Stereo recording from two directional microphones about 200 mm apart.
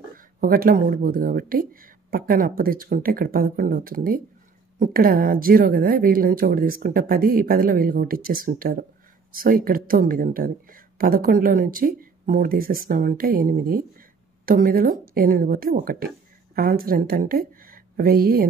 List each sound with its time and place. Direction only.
0.4 s a woman's voice: 45° right (ahead or behind)